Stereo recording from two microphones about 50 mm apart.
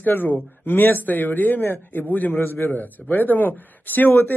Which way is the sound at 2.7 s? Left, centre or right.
Left.